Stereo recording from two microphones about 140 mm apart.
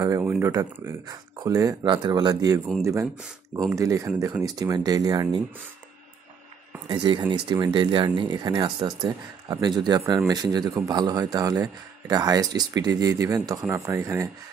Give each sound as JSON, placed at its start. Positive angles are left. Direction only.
{"t": 0.2, "sound": "speech", "side_deg": -10}
{"t": 0.5, "sound": "speech", "side_deg": -25}
{"t": 6.9, "sound": "speech", "side_deg": -30}